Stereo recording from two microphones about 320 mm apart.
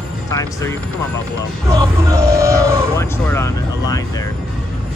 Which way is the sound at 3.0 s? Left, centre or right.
Centre.